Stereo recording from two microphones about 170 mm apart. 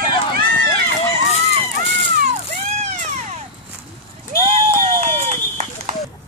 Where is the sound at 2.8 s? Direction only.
40° right (ahead or behind).